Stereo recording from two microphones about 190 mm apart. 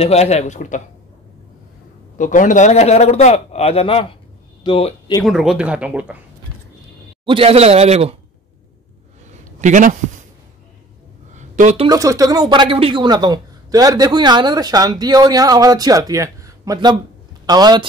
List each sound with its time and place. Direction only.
0.0 s a man's voice: 35° left (ahead or behind)
2.1 s a man's voice: 40° left (ahead or behind)
5.2 s speech: 5° right (ahead or behind)
7.2 s speech: 30° right (ahead or behind)
9.6 s speech: 40° right (ahead or behind)
11.3 s a sound: 40° right (ahead or behind)
11.9 s speech: 15° right (ahead or behind)